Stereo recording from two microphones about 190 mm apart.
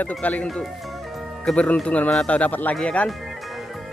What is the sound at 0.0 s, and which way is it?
A man's voice, 5° left (ahead or behind).